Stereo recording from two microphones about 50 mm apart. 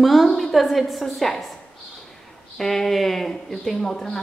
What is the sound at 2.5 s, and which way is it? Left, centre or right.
A woman's voice, centre.